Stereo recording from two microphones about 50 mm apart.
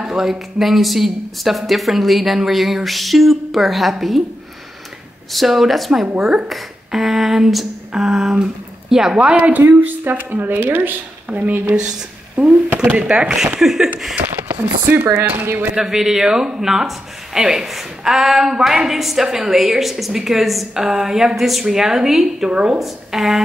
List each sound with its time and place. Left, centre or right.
0.0 s speech: centre
5.3 s speech: centre
6.1 s speech: right
6.5 s a sound: centre
9.4 s a woman's voice: right
13.6 s speech: centre
14.6 s a woman's voice: right
15.7 s speech: centre
22.5 s speech: centre
22.8 s speech: centre